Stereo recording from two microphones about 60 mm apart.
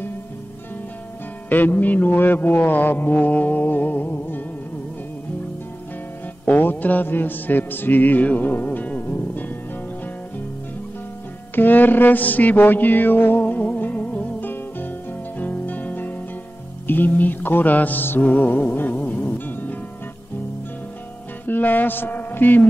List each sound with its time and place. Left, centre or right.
1.5 s mantra: left
6.4 s mantra: left
11.5 s mantra: left
14.5 s music: left
21.5 s mantra: left